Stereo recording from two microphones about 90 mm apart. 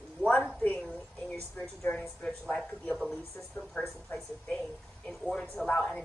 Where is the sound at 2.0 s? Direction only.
10° left (ahead or behind).